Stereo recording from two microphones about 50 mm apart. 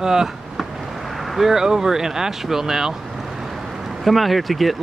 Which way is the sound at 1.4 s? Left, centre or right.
Centre.